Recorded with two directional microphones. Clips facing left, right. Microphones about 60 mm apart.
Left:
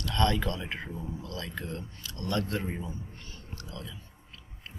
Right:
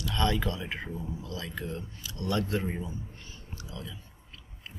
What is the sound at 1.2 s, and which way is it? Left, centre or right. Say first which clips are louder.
Speech: right 1 dB; centre.